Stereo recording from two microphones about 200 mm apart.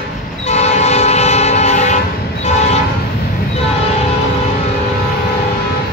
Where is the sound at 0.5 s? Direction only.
35° left (ahead or behind).